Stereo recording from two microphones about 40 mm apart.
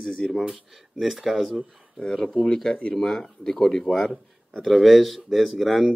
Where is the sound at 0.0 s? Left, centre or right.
Centre.